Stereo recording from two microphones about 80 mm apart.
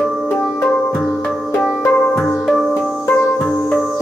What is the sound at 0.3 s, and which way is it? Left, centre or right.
Music, left.